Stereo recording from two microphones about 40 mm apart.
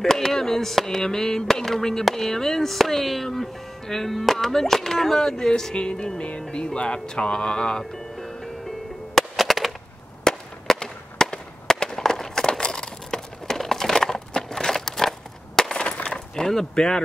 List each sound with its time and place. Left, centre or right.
0.0 s speech: centre
9.1 s music: centre
10.2 s fireworks: centre
12.4 s a sound: centre
15.8 s skateboard: left
16.3 s speech: centre